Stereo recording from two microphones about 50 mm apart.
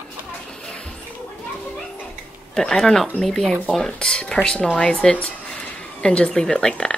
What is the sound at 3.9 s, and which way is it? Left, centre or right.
Speech, centre.